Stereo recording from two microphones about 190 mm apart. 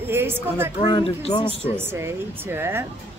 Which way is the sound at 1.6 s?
10° right (ahead or behind).